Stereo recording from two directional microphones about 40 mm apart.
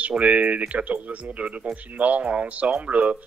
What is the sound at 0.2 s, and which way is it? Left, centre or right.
A man's voice, right.